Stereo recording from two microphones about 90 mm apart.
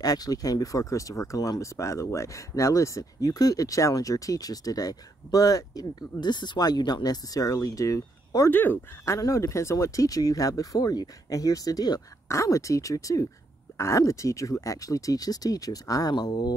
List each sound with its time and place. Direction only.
0.0 s speech: 45° left (ahead or behind)
6.2 s speech: 55° left (ahead or behind); by 8.5 s 40° left (ahead or behind)
8.5 s speech: 20° left (ahead or behind)
9.0 s speech: 35° left (ahead or behind); by 16.5 s 50° left (ahead or behind)